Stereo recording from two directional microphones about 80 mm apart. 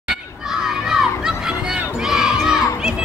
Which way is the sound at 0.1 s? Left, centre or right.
Centre.